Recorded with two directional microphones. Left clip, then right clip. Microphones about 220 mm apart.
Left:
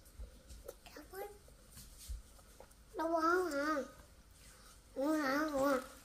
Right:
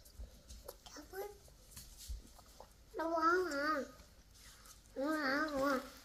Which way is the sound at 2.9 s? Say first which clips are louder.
Even; 5° left (ahead or behind).